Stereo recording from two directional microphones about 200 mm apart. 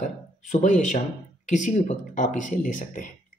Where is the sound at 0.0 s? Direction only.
35° left (ahead or behind).